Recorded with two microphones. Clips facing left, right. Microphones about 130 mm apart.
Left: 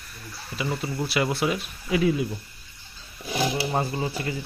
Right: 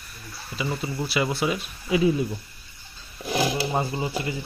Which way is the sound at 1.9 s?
20° right (ahead or behind).